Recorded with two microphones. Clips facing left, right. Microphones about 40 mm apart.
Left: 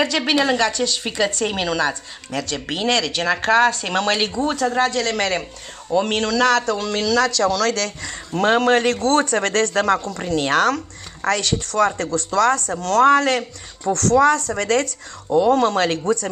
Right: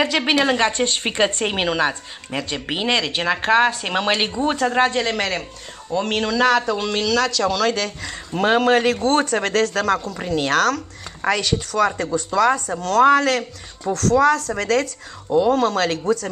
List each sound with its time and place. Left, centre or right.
0.0 s a woman's voice: centre
0.7 s a woman's voice: right
5.1 s speech: centre
6.2 s speech: centre
11.2 s speech: centre